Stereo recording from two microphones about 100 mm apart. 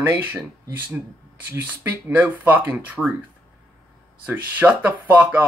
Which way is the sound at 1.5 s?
20° right (ahead or behind).